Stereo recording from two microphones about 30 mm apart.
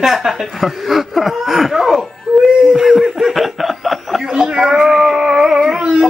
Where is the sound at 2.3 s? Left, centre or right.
Right.